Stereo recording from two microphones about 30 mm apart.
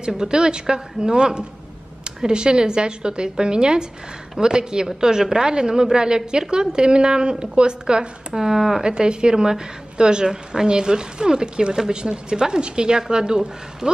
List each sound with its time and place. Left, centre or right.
0.0 s a woman's voice: right
8.3 s speech: centre
8.8 s a woman's voice: right